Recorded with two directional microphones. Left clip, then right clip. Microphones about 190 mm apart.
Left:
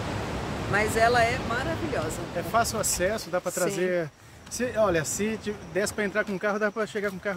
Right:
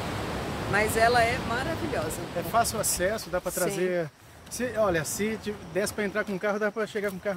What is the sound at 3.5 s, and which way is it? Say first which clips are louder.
Speech: left 1 dB; 5° left (ahead or behind).